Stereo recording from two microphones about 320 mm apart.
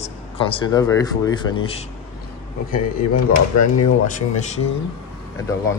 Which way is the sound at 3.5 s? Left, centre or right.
Left.